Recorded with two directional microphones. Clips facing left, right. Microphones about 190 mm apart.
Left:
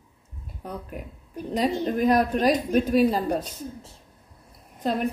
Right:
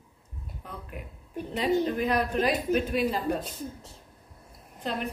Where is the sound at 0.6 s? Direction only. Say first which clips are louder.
Left 7 dB; 45° left (ahead or behind).